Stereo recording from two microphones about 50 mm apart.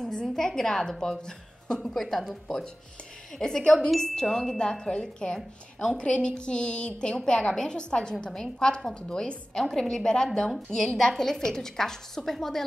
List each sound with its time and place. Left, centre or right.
0.0 s speech: centre
2.4 s speech: centre